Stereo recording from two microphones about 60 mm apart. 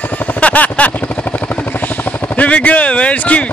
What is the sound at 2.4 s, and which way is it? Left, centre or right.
Speech, left.